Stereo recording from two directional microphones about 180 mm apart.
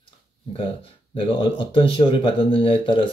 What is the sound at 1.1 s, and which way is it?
Speech, 30° left (ahead or behind).